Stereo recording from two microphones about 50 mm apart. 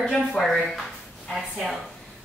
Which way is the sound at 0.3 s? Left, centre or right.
Centre.